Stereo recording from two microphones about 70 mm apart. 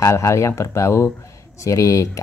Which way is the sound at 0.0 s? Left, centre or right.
Left.